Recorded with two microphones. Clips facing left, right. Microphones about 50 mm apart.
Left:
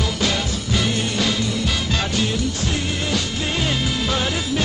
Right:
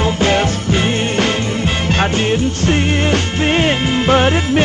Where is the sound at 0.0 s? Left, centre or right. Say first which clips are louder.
Right 8 dB; right.